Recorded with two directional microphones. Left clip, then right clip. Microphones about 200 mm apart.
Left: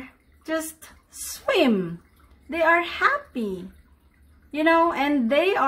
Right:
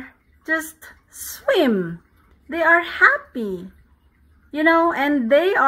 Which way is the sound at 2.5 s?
25° right (ahead or behind).